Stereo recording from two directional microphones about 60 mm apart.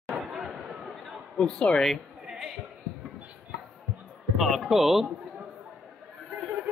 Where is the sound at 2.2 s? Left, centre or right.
Centre.